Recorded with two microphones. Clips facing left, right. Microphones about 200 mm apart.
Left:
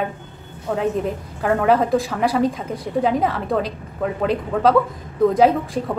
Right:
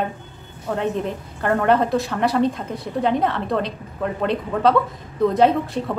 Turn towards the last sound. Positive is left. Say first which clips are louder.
# left 1 dB
turn(degrees=5)  # may be behind; listen again after turning